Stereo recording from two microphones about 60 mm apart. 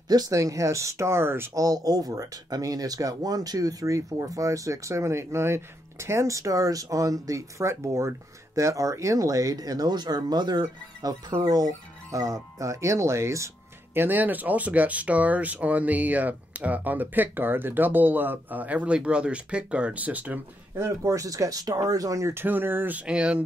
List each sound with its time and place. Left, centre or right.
0.1 s speech: right
1.5 s speech: right
13.9 s speech: right
20.8 s speech: right
22.3 s speech: right
23.0 s speech: centre